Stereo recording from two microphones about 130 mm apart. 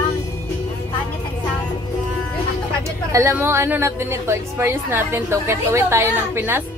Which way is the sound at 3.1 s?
20° right (ahead or behind).